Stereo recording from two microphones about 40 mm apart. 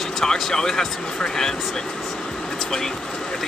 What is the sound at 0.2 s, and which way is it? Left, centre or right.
Speech, centre.